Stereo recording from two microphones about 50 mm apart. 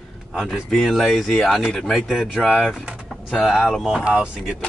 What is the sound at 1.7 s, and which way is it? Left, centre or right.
Speech, centre.